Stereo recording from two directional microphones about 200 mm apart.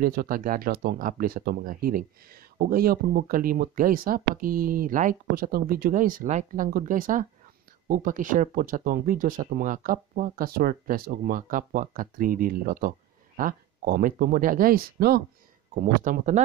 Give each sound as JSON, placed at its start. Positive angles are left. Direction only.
{"t": 0.0, "sound": "speech", "side_deg": -45}